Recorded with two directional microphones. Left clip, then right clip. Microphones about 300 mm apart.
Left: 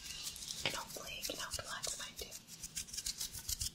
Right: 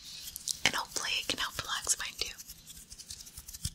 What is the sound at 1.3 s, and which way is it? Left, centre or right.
Whispering, right.